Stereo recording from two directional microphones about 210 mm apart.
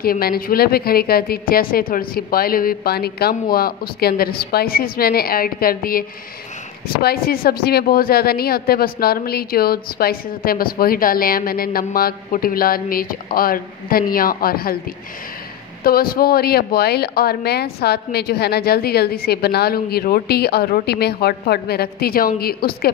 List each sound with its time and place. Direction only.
0.0 s a woman's voice: 45° left (ahead or behind)
15.8 s a woman's voice: 45° left (ahead or behind)